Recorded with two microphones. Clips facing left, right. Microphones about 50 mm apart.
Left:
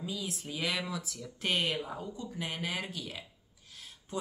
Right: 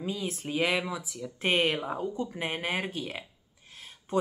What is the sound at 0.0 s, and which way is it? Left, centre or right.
Speech, right.